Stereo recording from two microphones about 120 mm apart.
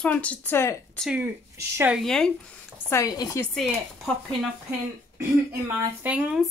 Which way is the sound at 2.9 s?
30° left (ahead or behind).